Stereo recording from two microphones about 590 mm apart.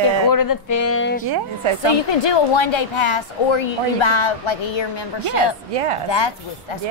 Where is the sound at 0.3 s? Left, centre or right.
Left.